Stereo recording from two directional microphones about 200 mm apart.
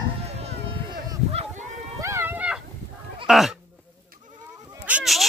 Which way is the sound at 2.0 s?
10° right (ahead or behind).